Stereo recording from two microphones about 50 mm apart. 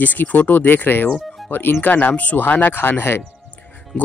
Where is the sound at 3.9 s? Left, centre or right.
Centre.